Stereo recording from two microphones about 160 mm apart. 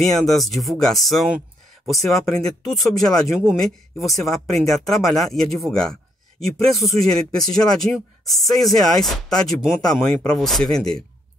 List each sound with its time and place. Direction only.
0.0 s speech: centre (ahead or behind)